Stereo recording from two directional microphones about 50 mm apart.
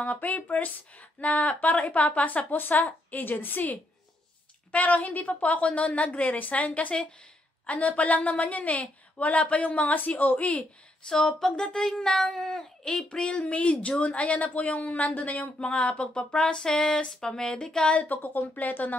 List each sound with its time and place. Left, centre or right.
0.0 s a woman's voice: left
11.1 s speech: centre
13.3 s speech: left
17.9 s a woman's voice: left